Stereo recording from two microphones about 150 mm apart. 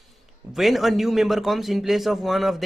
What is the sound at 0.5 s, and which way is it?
A man's voice, centre (ahead or behind).